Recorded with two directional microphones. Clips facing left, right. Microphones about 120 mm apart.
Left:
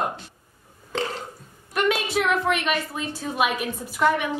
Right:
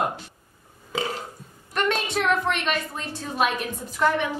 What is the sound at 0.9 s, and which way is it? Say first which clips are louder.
Burping: left 1 dB; 5° right (ahead or behind).